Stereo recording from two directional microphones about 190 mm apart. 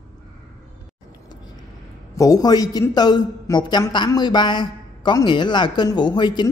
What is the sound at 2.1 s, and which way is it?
A man's voice, 20° left (ahead or behind).